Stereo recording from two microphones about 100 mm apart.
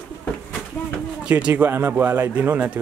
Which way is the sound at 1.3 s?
15° right (ahead or behind).